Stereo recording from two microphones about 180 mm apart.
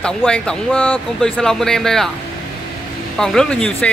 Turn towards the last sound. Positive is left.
turn(degrees=5)  # may be behind; listen again after turning